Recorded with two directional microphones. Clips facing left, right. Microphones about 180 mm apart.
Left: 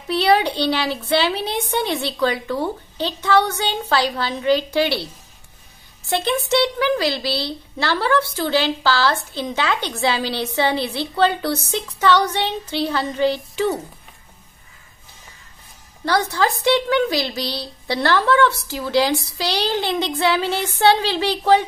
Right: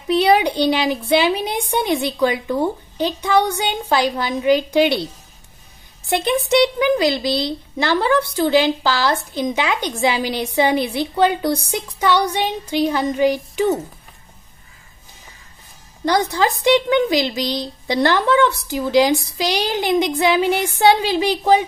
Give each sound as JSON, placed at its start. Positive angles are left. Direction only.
{"t": 0.1, "sound": "a woman's voice", "side_deg": -15}
{"t": 6.0, "sound": "a woman's voice", "side_deg": -15}
{"t": 16.1, "sound": "a woman's voice", "side_deg": -15}